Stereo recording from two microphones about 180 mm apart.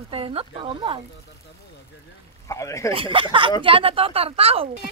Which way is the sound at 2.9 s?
30° right (ahead or behind).